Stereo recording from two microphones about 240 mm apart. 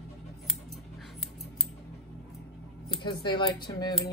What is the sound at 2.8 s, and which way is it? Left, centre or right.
Speech, centre.